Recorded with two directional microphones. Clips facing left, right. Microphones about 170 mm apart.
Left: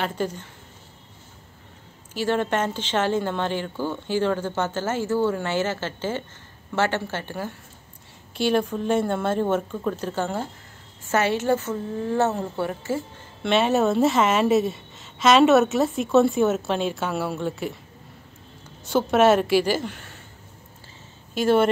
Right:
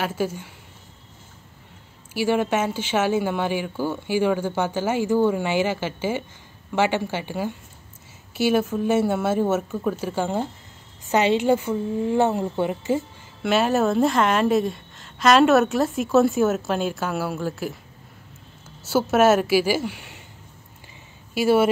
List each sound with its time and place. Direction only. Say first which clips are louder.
0.0 s a woman's voice: right 1 dB; 5° right (ahead or behind)
2.1 s a woman's voice: right 2 dB; 10° right (ahead or behind)
13.4 s a woman's voice: even; centre (ahead or behind)
18.9 s a woman's voice: even; 5° right (ahead or behind)
21.4 s a woman's voice: right 1 dB; 10° right (ahead or behind)